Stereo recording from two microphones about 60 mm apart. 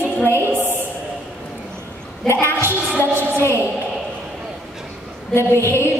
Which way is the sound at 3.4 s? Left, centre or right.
Left.